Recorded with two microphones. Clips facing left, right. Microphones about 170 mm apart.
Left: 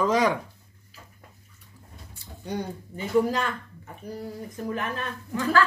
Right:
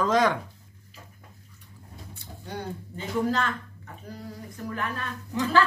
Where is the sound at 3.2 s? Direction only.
15° left (ahead or behind).